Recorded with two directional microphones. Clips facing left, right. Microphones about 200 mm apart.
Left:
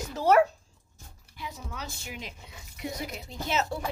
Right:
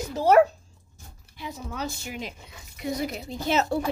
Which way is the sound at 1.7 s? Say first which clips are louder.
Right 7 dB; 40° right (ahead or behind).